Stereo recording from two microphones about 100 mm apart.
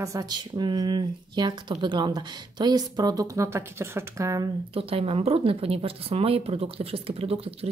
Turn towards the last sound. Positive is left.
turn(degrees=-80)